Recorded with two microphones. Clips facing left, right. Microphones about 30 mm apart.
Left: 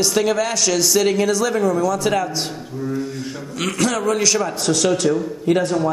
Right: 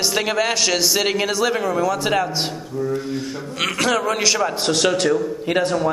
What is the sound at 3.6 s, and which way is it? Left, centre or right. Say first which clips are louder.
Speech: even; right.